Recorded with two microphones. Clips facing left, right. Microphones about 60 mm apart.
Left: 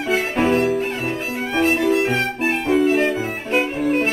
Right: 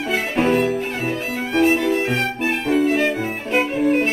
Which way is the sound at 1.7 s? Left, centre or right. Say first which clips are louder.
Left 1 dB; centre.